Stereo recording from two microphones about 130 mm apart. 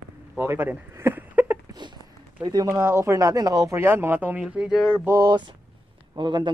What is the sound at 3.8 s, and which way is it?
Speech, 15° right (ahead or behind).